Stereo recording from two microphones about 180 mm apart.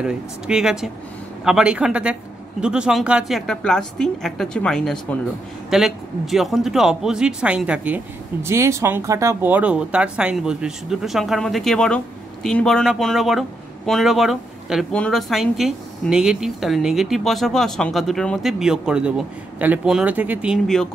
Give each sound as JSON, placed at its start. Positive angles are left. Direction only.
{"t": 0.0, "sound": "speech", "side_deg": -5}